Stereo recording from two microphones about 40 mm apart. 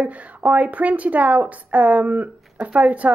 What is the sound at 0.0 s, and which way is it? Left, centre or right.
A woman's voice, right.